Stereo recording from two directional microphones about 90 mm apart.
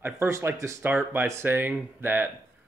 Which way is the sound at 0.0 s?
30° right (ahead or behind).